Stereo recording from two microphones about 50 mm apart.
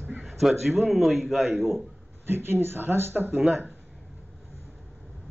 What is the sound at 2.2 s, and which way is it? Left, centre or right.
Speech, right.